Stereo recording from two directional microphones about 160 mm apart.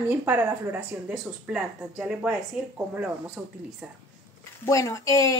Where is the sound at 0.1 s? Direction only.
10° right (ahead or behind).